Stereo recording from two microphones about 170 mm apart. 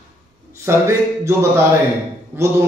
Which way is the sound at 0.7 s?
15° right (ahead or behind).